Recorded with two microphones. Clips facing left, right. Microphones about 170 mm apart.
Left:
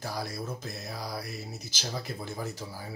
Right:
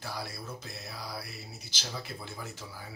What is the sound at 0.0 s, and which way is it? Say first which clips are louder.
Music: left 4 dB; 40° left (ahead or behind).